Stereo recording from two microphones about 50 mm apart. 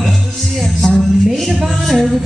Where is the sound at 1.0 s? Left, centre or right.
Centre.